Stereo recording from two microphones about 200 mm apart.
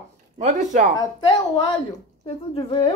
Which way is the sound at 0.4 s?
35° right (ahead or behind).